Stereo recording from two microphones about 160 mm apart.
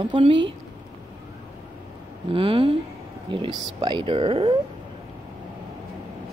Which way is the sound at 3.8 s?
30° right (ahead or behind).